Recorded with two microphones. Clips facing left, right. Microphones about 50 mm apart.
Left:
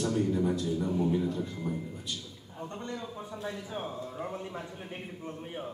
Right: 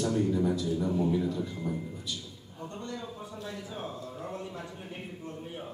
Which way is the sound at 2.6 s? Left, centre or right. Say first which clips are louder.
Left 1 dB; left.